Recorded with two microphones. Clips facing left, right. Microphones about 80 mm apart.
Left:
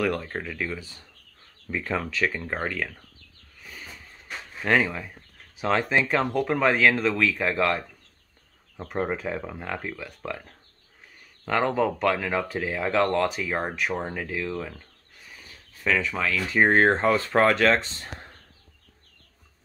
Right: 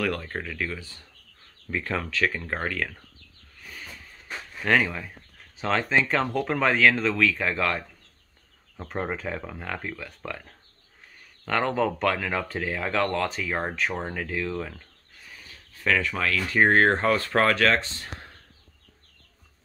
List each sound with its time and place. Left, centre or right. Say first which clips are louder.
0.0 s speech: left 2 dB; centre
4.6 s speech: even; centre
8.7 s speech: left 2 dB; centre
15.3 s speech: even; centre